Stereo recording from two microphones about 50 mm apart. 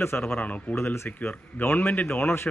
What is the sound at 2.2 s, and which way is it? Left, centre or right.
Speech, left.